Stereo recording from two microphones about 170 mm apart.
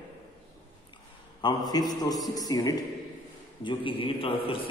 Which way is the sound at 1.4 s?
25° left (ahead or behind).